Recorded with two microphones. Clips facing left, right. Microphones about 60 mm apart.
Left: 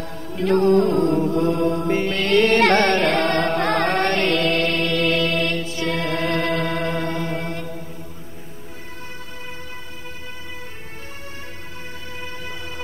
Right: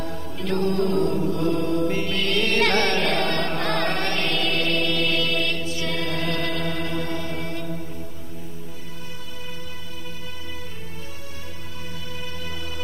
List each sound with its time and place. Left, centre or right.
0.4 s music: left